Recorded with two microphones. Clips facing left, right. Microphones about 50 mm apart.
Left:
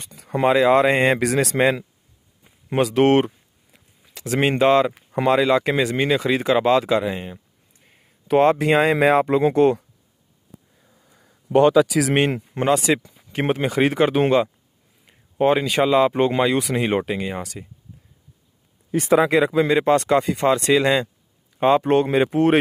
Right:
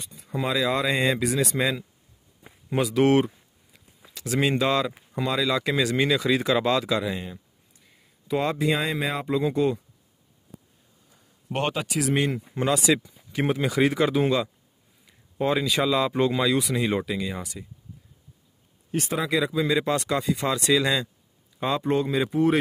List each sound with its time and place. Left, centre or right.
0.1 s speech: left
0.5 s speech: left
5.1 s speech: left
7.8 s a sound: left
8.3 s speech: left
12.2 s speech: left
19.1 s speech: left